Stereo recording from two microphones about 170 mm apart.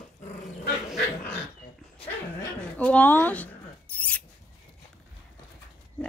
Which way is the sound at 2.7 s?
10° left (ahead or behind).